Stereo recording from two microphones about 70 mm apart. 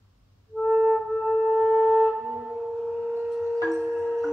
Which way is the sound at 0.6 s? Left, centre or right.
Centre.